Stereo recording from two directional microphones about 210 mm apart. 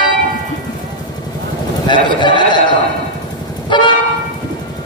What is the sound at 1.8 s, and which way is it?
Sheep, 20° left (ahead or behind).